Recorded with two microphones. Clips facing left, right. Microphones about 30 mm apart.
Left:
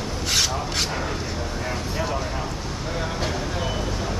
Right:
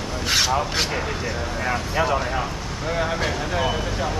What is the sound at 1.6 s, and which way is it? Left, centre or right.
Speech, right.